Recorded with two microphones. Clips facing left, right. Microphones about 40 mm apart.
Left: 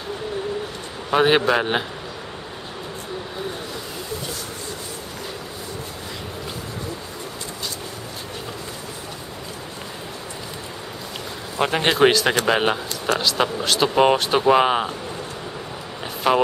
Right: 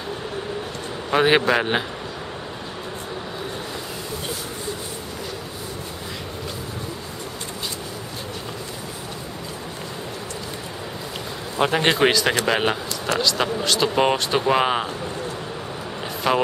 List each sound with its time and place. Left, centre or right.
1.1 s speech: centre
11.5 s a man's voice: centre
16.3 s speech: centre